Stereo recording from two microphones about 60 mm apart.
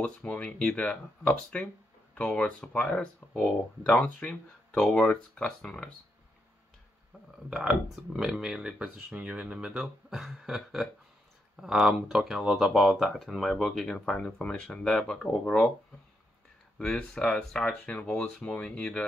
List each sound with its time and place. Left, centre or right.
0.0 s speech: left
7.9 s speech: centre
16.7 s speech: centre